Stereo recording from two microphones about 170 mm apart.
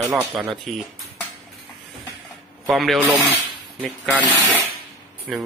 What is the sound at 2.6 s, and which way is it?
Speech, centre (ahead or behind).